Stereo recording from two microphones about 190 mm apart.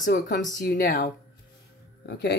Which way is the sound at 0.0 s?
45° left (ahead or behind).